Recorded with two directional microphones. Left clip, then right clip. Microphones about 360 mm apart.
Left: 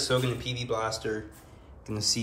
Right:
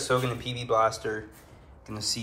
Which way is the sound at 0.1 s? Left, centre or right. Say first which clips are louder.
Right 1 dB; centre.